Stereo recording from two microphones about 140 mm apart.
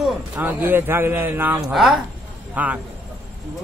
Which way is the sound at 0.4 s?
15° right (ahead or behind).